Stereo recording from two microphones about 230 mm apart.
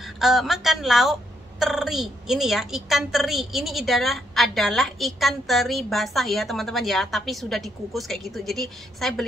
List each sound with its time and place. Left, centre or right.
0.0 s a woman's voice: centre